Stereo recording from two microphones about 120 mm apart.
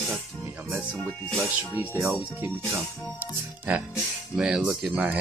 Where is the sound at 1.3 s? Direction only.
15° right (ahead or behind).